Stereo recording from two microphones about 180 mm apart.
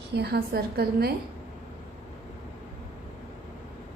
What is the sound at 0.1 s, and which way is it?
A woman's voice, 65° right (ahead or behind).